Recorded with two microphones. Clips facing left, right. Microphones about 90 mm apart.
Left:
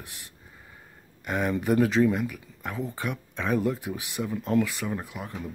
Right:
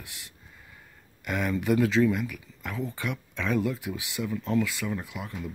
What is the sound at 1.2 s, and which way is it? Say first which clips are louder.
Speech: left 2 dB; 35° left (ahead or behind).